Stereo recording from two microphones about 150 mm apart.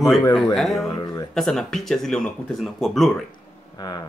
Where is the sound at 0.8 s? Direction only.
25° left (ahead or behind).